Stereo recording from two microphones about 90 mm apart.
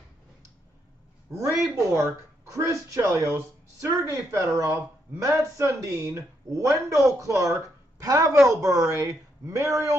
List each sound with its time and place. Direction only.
1.3 s speech: 35° right (ahead or behind)